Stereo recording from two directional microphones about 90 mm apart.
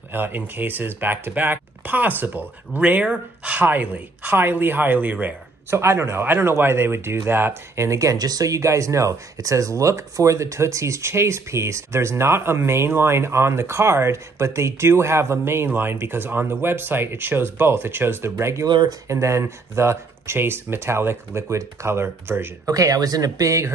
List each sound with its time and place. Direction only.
0.1 s speech: 25° right (ahead or behind)
18.7 s speech: 60° right (ahead or behind)
19.0 s speech: 35° right (ahead or behind)
22.7 s speech: 40° right (ahead or behind)